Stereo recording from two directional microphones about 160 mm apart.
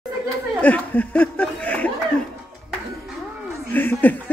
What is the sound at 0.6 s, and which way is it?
Chuckle, 10° left (ahead or behind).